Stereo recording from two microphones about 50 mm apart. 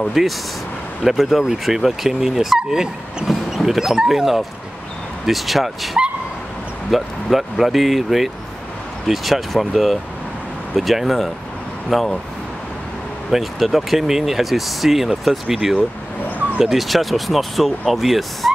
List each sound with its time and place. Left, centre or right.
0.2 s speech: centre
6.9 s speech: centre
10.8 s speech: centre
13.3 s speech: centre